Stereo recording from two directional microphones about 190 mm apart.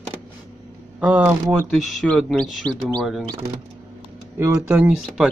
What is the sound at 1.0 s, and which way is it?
Speech, 5° right (ahead or behind).